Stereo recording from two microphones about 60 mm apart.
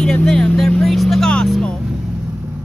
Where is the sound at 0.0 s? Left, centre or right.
Centre.